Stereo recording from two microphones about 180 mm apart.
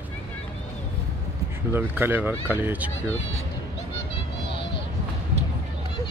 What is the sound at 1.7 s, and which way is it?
Speech, 10° right (ahead or behind).